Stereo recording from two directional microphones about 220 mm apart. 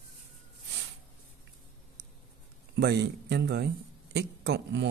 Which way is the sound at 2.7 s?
50° right (ahead or behind).